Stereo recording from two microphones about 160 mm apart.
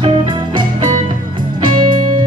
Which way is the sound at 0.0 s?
35° right (ahead or behind).